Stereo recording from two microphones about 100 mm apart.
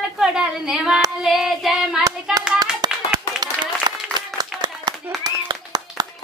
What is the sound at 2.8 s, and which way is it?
Clapping, 45° right (ahead or behind).